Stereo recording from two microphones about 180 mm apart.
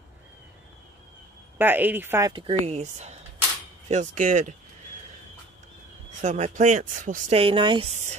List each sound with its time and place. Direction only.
1.6 s speech: 10° right (ahead or behind)
2.3 s speech: 30° right (ahead or behind)
6.2 s speech: 40° right (ahead or behind)
7.3 s speech: 30° right (ahead or behind)